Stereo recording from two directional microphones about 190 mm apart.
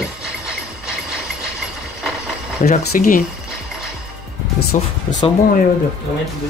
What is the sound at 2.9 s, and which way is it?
Speech, 45° left (ahead or behind).